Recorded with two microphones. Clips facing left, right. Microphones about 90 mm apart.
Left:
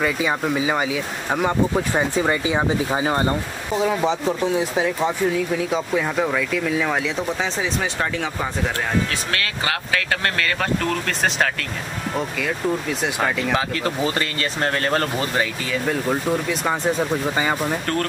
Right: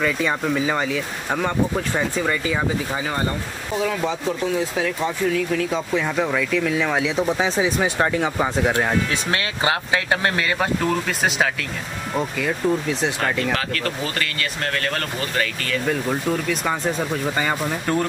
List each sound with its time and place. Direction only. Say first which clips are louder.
0.0 s speech: even; 5° left (ahead or behind)
2.0 s speech: left 2 dB; 20° left (ahead or behind)
3.2 s speech: left 3 dB; 15° left (ahead or behind); by 8.7 s 10° right (ahead or behind)
9.3 s speech: right 3 dB; 25° right (ahead or behind); by 13.5 s 5° left (ahead or behind)
13.5 s speech: left 2 dB; 20° left (ahead or behind)
15.9 s speech: left 1 dB; 5° left (ahead or behind)